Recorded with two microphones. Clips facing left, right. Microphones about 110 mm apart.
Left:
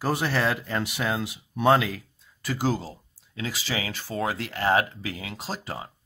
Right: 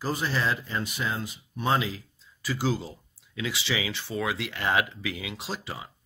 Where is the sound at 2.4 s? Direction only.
50° left (ahead or behind).